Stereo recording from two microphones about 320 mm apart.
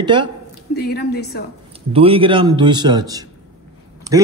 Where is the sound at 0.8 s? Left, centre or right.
Left.